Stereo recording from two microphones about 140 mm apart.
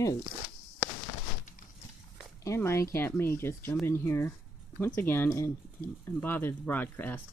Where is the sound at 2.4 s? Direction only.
20° left (ahead or behind).